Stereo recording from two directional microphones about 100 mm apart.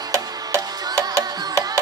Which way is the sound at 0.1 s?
30° right (ahead or behind).